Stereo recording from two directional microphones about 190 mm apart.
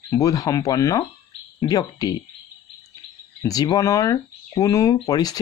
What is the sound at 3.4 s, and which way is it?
Speech, 20° left (ahead or behind).